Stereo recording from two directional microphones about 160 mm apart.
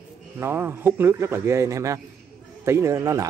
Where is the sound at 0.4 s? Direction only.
15° right (ahead or behind).